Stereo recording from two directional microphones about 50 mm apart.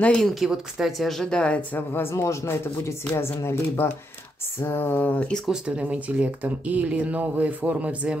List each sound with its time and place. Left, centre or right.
0.2 s a woman's voice: centre
1.3 s speech: left
1.9 s speech: left
3.2 s speech: left
4.6 s speech: left
5.5 s speech: right